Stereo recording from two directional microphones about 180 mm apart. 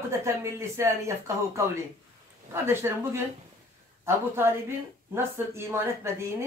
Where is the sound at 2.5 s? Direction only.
15° right (ahead or behind).